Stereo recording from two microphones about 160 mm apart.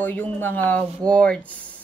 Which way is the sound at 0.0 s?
10° left (ahead or behind).